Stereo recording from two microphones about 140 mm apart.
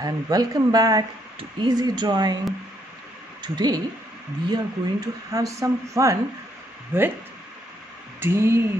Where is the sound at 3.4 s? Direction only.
30° right (ahead or behind).